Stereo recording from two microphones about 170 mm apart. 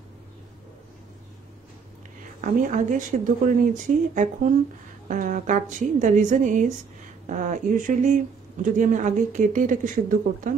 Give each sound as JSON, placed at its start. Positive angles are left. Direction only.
{"t": 2.4, "sound": "speech", "side_deg": -50}